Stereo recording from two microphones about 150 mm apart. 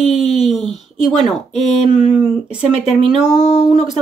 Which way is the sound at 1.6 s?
45° left (ahead or behind).